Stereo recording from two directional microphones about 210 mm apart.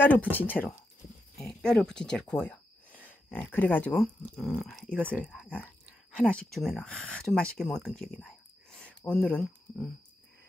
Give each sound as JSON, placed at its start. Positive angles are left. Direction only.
{"t": 0.0, "sound": "speech", "side_deg": 5}
{"t": 1.4, "sound": "a sound", "side_deg": 5}
{"t": 3.5, "sound": "speech", "side_deg": 10}